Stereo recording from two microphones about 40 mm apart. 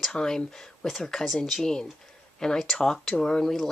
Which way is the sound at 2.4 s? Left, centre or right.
Centre.